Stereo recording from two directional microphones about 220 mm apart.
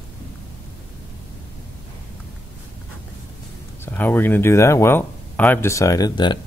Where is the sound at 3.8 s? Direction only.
10° left (ahead or behind).